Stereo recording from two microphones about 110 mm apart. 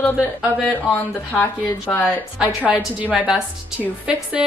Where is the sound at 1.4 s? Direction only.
15° left (ahead or behind).